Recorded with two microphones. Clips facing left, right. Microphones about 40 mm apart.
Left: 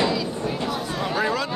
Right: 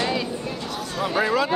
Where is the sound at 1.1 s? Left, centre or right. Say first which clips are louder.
Right 3 dB; centre.